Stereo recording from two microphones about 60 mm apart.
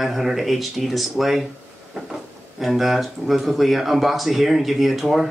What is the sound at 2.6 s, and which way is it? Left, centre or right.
Speech, centre.